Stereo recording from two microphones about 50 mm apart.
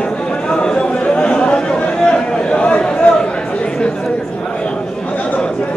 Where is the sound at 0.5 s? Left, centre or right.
Centre.